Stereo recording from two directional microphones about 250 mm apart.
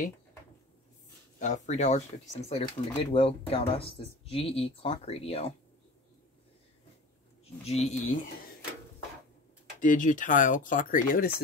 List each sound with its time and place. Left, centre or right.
1.4 s speech: left
7.6 s speech: left
9.8 s speech: left